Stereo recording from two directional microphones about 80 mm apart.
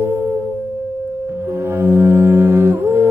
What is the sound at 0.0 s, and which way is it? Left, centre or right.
Music, right.